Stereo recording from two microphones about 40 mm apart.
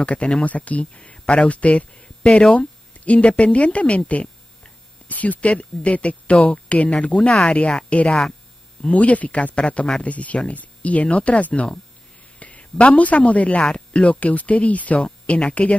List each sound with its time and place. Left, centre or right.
0.0 s speech: left
8.9 s speech: left